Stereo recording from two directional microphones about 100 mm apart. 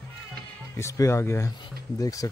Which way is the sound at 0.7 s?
25° left (ahead or behind).